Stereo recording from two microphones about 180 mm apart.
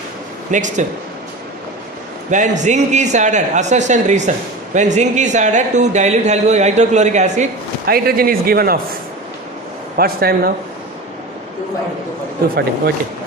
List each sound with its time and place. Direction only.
0.5 s speech: 45° right (ahead or behind)
2.3 s speech: 40° right (ahead or behind)
7.8 s a man's voice: 55° right (ahead or behind)
9.9 s a man's voice: 60° right (ahead or behind)
12.4 s a man's voice: 60° right (ahead or behind)